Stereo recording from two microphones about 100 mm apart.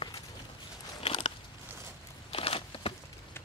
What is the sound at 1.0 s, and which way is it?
Biting, 80° left.